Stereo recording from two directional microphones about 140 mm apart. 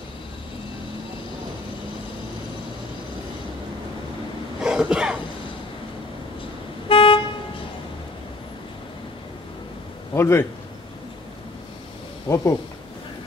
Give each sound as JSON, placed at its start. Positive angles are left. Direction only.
{"t": 4.6, "sound": "cough", "side_deg": -5}
{"t": 6.9, "sound": "vehicle", "side_deg": 40}
{"t": 10.1, "sound": "a man's voice", "side_deg": 20}
{"t": 12.3, "sound": "speech", "side_deg": 25}